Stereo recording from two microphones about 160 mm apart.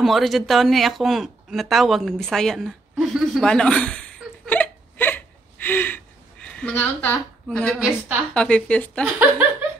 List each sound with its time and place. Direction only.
0.0 s a sound: centre (ahead or behind)
8.4 s speech: 5° left (ahead or behind)
9.0 s speech: 10° right (ahead or behind)